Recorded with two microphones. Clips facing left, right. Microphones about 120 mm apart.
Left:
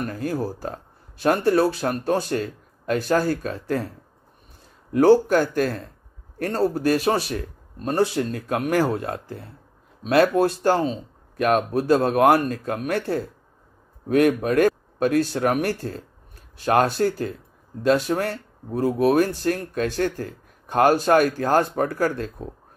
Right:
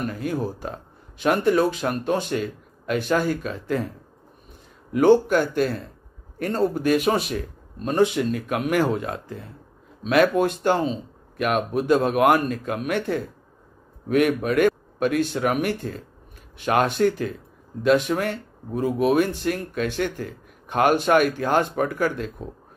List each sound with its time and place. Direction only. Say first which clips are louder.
0.0 s speech: even; 40° left (ahead or behind)
4.9 s a man's voice: left 1 dB; 40° left (ahead or behind)
10.0 s speech: left 1 dB; 30° left (ahead or behind)